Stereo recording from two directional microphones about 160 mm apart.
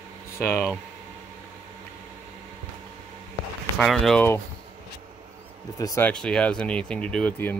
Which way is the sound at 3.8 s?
5° left (ahead or behind).